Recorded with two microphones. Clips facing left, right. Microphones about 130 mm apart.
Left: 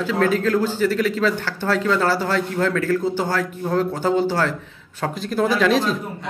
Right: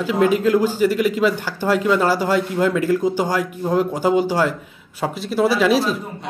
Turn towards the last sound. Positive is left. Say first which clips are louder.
# right 1 dB
turn(degrees=-5)  # may be behind; listen again after turning